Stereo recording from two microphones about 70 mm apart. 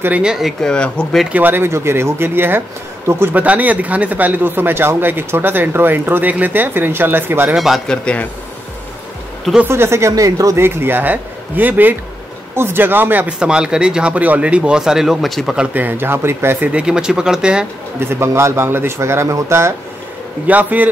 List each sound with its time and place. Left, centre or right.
0.2 s speech: centre
0.6 s speech: centre
1.3 s speech: right
1.7 s speech: right
7.5 s speech: centre
7.9 s speech: centre
9.7 s speech: right
10.1 s speech: right
10.6 s speech: right
13.4 s speech: centre
15.7 s speech: right
16.6 s speech: centre
17.9 s speech: right
20.4 s speech: right